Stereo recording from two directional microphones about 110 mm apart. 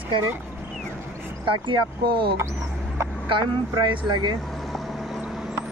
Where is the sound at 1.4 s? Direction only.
50° right (ahead or behind).